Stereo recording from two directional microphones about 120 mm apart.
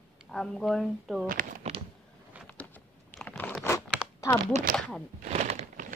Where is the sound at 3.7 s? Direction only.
25° left (ahead or behind).